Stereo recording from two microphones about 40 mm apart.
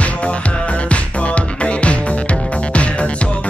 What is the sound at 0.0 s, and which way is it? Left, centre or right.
Music, left.